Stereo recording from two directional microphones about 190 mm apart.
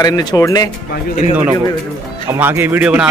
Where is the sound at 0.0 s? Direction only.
20° left (ahead or behind).